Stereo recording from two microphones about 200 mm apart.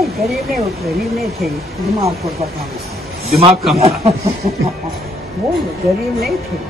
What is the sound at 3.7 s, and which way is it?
Speech, 30° right (ahead or behind).